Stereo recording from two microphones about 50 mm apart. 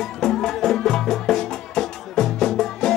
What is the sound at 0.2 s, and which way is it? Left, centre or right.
Music, centre.